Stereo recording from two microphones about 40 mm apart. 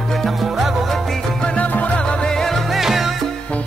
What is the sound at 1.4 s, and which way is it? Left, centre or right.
Music, left.